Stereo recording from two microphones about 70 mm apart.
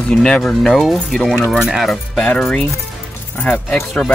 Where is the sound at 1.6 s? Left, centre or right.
Centre.